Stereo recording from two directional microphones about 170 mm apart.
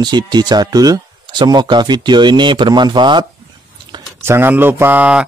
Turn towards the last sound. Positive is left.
turn(degrees=-5)  # may be behind; listen again after turning